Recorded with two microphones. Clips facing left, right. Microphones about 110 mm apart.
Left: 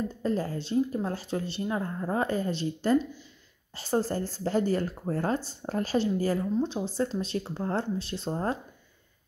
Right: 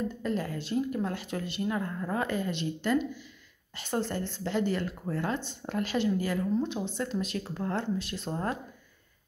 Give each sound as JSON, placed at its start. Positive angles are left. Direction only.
{"t": 0.2, "sound": "speech", "side_deg": 35}